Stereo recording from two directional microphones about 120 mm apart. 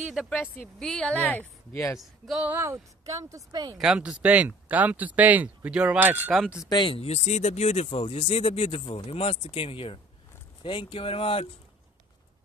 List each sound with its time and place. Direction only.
0.1 s a woman's voice: 5° right (ahead or behind)
1.7 s speech: 25° left (ahead or behind)
2.0 s speech: centre (ahead or behind)
2.4 s speech: 20° right (ahead or behind)
3.7 s speech: 5° right (ahead or behind)
6.3 s speech: 5° right (ahead or behind)
6.7 s speech: 40° left (ahead or behind)
7.0 s speech: 65° left (ahead or behind)